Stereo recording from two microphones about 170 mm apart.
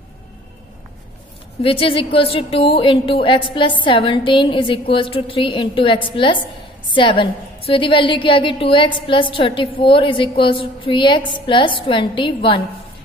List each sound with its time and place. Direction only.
1.6 s a woman's voice: 35° left (ahead or behind)